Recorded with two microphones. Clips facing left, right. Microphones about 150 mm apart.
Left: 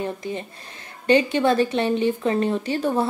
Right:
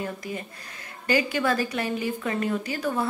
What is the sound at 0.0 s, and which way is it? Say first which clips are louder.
A woman's voice: left 4 dB; 25° left (ahead or behind).